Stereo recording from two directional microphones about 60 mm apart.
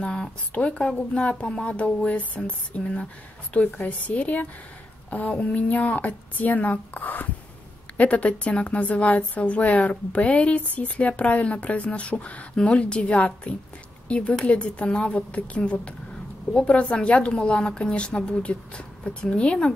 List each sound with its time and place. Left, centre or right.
0.0 s a woman's voice: centre